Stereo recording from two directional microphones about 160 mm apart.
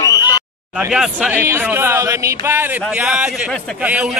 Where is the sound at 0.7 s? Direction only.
5° right (ahead or behind).